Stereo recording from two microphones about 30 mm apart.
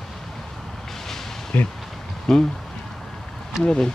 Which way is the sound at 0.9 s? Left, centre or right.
Centre.